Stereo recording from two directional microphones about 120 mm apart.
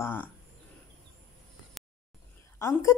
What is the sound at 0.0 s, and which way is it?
Speech, 15° left (ahead or behind).